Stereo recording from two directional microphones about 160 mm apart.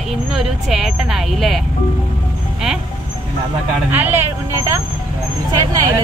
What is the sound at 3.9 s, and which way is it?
Speech, 10° right (ahead or behind).